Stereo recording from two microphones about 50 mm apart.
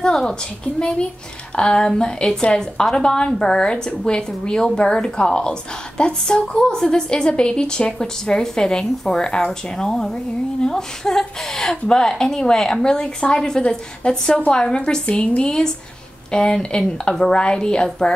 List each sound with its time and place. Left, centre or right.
0.0 s a woman's voice: centre